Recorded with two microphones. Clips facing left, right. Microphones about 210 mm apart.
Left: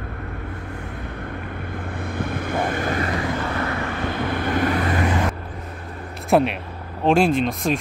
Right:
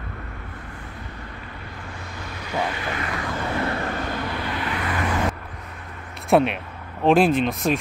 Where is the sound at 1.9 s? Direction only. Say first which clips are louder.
Left 13 dB; 55° left (ahead or behind).